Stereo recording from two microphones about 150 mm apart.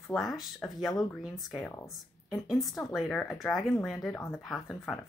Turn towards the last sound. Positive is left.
turn(degrees=0)  # may be behind; listen again after turning